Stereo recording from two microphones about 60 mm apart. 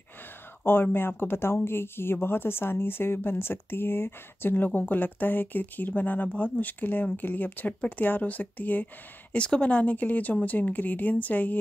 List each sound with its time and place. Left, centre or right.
0.9 s speech: left